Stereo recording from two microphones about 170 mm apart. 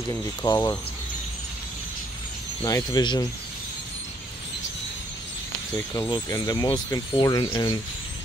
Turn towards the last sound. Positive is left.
turn(degrees=30)  # may be behind; listen again after turning